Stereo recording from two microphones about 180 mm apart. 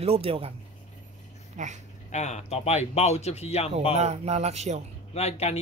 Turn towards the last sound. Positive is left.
turn(degrees=35)  # may be behind; listen again after turning